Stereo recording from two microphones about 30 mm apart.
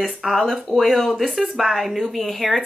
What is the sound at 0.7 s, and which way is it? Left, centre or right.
Speech, centre.